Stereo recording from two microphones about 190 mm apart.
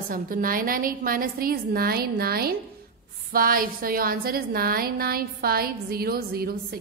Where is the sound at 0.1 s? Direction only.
45° right (ahead or behind).